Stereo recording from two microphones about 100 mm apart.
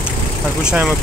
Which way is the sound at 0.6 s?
10° right (ahead or behind).